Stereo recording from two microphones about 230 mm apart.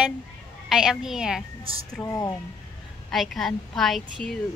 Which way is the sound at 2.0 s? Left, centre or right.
Centre.